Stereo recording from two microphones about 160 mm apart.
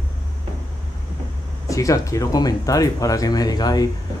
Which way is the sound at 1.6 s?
20° left (ahead or behind).